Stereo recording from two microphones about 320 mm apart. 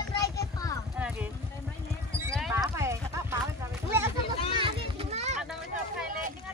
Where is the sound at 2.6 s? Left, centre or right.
Centre.